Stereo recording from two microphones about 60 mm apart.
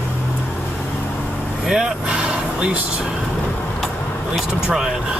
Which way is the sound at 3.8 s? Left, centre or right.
Centre.